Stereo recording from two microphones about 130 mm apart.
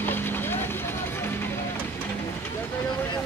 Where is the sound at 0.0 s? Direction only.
15° left (ahead or behind).